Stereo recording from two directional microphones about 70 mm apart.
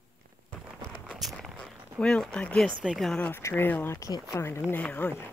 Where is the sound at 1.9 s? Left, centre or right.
Centre.